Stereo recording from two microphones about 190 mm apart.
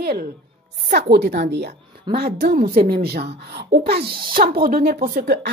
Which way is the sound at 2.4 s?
50° right (ahead or behind).